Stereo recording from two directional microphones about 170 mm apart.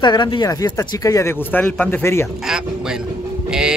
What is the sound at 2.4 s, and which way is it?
Speech, 5° right (ahead or behind).